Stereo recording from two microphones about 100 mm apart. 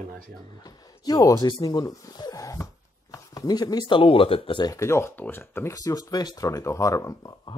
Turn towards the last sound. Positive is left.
turn(degrees=35)  # may be behind; listen again after turning